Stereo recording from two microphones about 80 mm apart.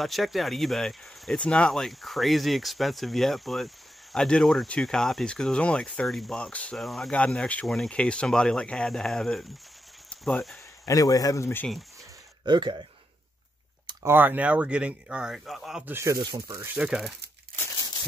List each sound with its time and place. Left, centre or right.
0.0 s speech: centre
6.0 s speech: centre
6.8 s speech: centre
7.1 s speech: centre
7.6 s speech: centre
7.9 s speech: centre
10.0 s a sound: centre
10.9 s a man's voice: left
12.4 s speech: right
14.0 s speech: right; by 15.8 s centre
15.8 s speech: right
16.2 s speech: right
16.7 s speech: centre